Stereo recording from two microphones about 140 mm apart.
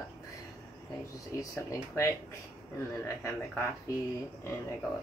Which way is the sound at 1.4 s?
20° left (ahead or behind).